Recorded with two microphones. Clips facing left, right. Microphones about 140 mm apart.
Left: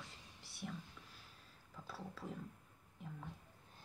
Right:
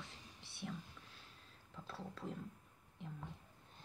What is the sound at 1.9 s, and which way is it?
Speech, 5° left (ahead or behind).